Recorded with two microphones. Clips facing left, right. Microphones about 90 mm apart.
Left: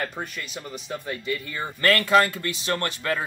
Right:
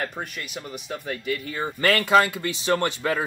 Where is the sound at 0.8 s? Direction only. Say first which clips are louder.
Right 1 dB; centre (ahead or behind).